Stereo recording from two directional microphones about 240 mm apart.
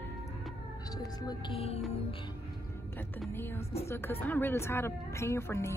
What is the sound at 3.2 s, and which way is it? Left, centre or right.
A woman's voice, centre.